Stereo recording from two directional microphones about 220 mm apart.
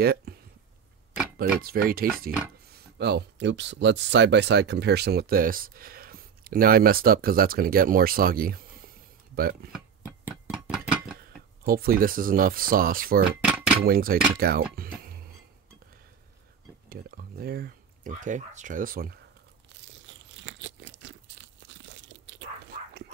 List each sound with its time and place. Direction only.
0.0 s speech: 45° right (ahead or behind)
1.6 s speech: 40° right (ahead or behind)
9.7 s guitar: 10° right (ahead or behind)
11.6 s speech: 40° right (ahead or behind)
16.9 s speech: 40° right (ahead or behind)
20.1 s crunch: 55° right (ahead or behind)